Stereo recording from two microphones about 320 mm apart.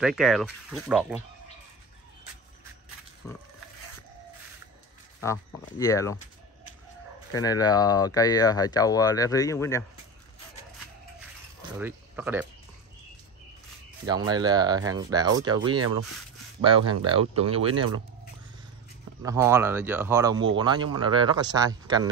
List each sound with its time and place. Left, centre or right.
0.0 s speech: centre
5.2 s speech: centre
7.3 s speech: centre
11.8 s speech: centre
14.0 s speech: centre
17.0 s speech: centre
19.2 s speech: centre